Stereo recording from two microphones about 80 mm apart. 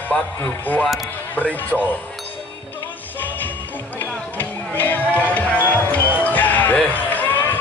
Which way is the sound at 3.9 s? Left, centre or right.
Left.